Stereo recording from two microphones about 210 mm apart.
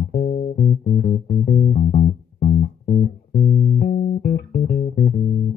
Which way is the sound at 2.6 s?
45° left (ahead or behind).